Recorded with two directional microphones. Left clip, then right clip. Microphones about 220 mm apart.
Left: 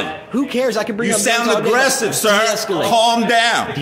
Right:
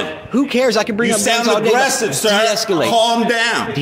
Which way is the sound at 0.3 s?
15° right (ahead or behind).